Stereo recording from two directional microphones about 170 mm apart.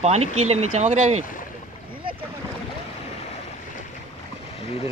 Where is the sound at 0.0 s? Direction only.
40° right (ahead or behind).